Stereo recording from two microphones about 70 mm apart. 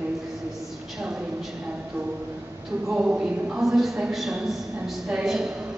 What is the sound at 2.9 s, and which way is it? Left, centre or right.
Speech, centre.